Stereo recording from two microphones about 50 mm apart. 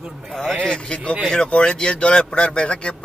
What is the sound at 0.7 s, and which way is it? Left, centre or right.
Speech, centre.